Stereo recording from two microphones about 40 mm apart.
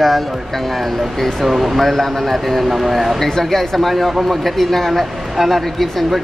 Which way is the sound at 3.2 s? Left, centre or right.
Centre.